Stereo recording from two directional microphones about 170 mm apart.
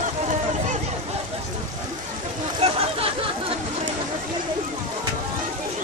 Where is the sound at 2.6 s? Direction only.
40° right (ahead or behind).